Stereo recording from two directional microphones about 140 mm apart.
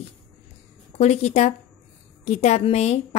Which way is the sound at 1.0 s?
50° left (ahead or behind).